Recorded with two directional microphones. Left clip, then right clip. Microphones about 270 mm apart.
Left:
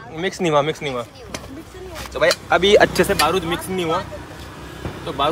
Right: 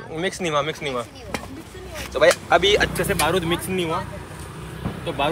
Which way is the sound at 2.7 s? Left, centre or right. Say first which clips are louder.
Left 6 dB; left.